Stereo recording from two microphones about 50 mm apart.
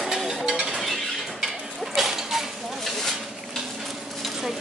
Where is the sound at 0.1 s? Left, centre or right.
Centre.